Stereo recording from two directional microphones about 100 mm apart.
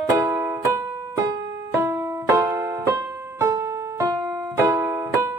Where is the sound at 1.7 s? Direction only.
25° right (ahead or behind).